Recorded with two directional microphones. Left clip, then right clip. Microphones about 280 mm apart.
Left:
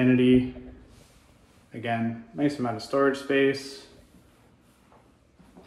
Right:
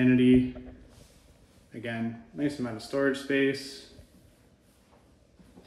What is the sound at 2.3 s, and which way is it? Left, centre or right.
Speech, centre.